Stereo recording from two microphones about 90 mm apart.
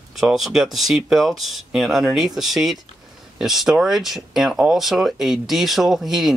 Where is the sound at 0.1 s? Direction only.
Centre (ahead or behind).